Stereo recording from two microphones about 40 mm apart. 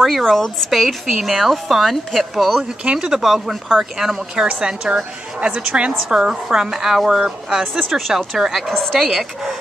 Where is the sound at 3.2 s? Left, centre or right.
Centre.